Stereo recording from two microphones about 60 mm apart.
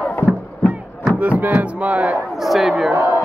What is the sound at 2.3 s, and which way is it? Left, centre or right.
Speech, centre.